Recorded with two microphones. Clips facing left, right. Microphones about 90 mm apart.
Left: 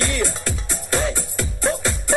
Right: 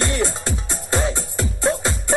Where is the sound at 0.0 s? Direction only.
15° right (ahead or behind).